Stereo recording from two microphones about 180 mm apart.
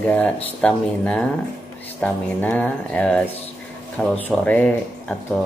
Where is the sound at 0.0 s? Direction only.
10° left (ahead or behind).